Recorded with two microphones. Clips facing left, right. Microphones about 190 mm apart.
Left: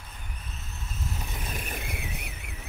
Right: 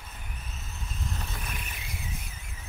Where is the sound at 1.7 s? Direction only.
55° left (ahead or behind).